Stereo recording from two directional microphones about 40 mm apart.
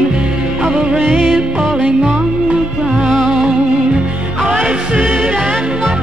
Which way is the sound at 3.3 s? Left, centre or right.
Centre.